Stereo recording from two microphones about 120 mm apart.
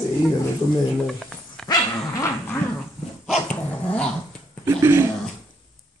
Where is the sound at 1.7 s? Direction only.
25° left (ahead or behind).